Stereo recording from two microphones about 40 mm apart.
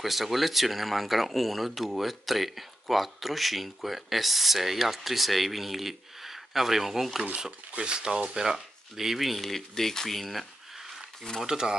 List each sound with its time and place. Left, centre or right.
0.0 s speech: centre
7.7 s speech: right; by 11.1 s centre
11.4 s speech: centre